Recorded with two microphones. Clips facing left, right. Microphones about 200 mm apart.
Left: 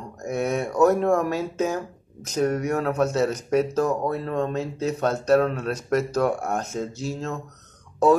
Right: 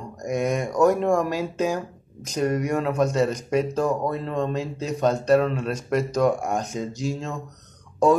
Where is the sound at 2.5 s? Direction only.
10° right (ahead or behind).